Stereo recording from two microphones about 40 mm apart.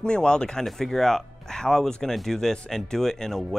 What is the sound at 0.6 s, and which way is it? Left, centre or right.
Speech, centre.